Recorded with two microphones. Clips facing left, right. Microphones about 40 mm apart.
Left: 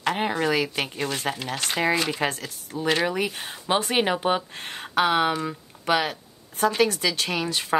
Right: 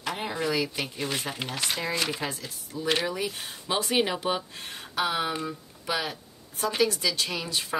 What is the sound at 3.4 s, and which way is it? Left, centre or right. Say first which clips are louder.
Speech: left 5 dB; left.